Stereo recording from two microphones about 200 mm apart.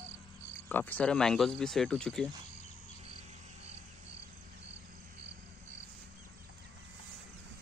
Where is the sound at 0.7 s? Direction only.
10° left (ahead or behind).